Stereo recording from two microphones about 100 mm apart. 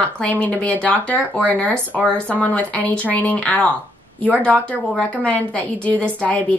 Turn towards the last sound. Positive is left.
turn(degrees=15)  # may be behind; listen again after turning